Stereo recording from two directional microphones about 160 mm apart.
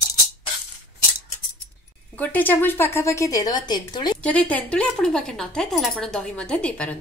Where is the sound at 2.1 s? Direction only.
10° left (ahead or behind); by 4.2 s 25° left (ahead or behind).